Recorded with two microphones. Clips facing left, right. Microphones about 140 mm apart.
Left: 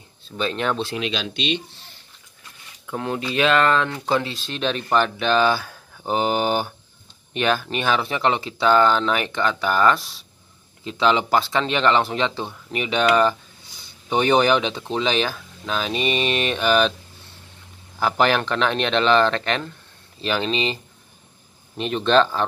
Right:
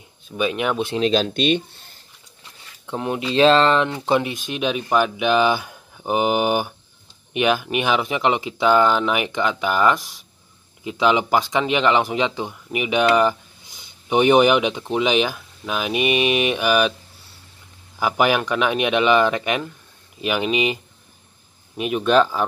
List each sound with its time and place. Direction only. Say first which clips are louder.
0.2 s speech: right 2 dB; 10° right (ahead or behind)
0.9 s speech: right 7 dB; 40° right (ahead or behind)
2.9 s speech: right 2 dB; 20° right (ahead or behind)
3.3 s speech: right 4 dB; 30° right (ahead or behind); by 16.9 s 10° right (ahead or behind)
17.9 s speech: right 1 dB; 10° right (ahead or behind)